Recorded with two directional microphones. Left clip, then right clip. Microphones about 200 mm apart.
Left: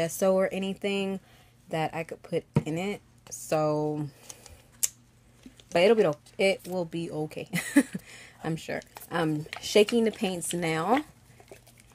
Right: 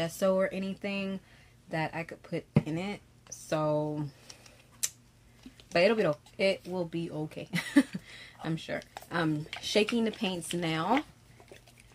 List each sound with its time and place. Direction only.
0.0 s speech: 25° left (ahead or behind)
5.7 s speech: 30° left (ahead or behind)